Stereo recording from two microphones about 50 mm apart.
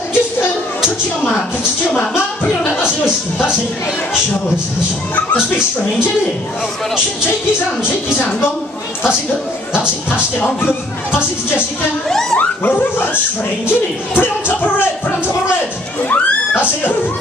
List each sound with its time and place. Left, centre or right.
9.8 s speech: right
12.1 s speech: centre
12.4 s speech: left
16.1 s a sound: left